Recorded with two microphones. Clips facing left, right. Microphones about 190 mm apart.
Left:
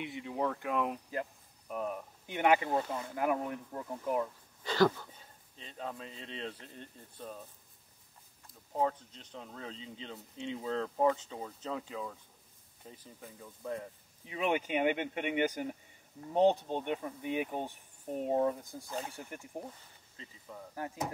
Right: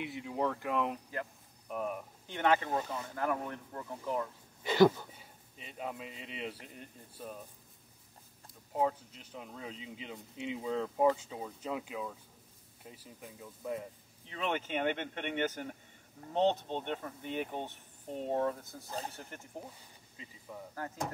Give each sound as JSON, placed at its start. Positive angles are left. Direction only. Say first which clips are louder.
{"t": 0.0, "sound": "speech", "louder": "even", "side_deg": 0}
{"t": 2.2, "sound": "speech", "louder": "left 2 dB", "side_deg": 15}
{"t": 4.6, "sound": "speech", "louder": "right 3 dB", "side_deg": -15}
{"t": 8.7, "sound": "speech", "louder": "even", "side_deg": -10}
{"t": 14.2, "sound": "speech", "louder": "left 3 dB", "side_deg": 10}
{"t": 18.9, "sound": "speech", "louder": "left 1 dB", "side_deg": -35}
{"t": 20.2, "sound": "speech", "louder": "right 1 dB", "side_deg": -5}
{"t": 20.7, "sound": "speech", "louder": "left 2 dB", "side_deg": 15}